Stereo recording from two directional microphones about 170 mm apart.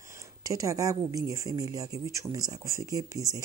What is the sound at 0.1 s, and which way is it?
Speech, 20° right (ahead or behind).